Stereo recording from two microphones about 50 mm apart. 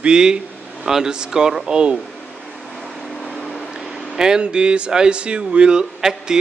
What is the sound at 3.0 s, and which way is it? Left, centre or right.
Vehicle, centre.